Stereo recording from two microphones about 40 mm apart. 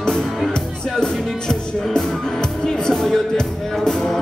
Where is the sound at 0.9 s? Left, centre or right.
Centre.